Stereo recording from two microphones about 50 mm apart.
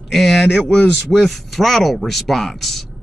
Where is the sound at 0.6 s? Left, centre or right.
Left.